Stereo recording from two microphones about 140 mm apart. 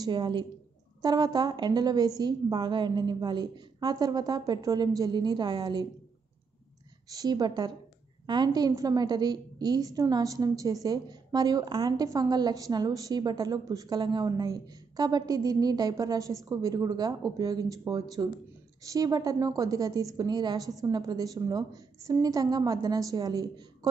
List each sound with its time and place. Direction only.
0.0 s a woman's voice: 30° right (ahead or behind)
7.1 s a woman's voice: 30° right (ahead or behind)